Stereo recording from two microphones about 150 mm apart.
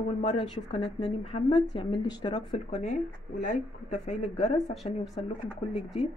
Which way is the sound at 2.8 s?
55° left (ahead or behind).